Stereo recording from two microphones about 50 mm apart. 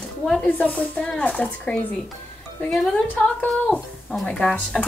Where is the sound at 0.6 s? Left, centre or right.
Left.